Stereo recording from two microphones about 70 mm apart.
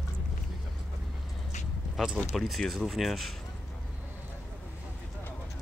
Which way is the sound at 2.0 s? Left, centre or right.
Centre.